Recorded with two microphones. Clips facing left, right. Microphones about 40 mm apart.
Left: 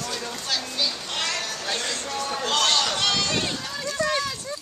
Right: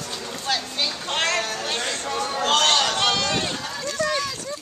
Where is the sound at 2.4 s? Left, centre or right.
Right.